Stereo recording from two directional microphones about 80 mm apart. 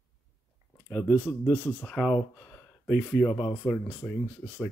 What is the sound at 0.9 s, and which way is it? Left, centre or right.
Speech, left.